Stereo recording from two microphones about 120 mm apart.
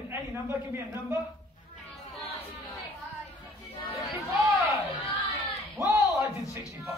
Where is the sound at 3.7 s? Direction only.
55° left (ahead or behind).